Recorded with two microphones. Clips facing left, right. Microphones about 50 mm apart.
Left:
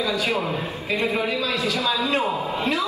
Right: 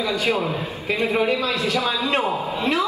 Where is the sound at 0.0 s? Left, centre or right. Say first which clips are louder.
Right 2 dB; right.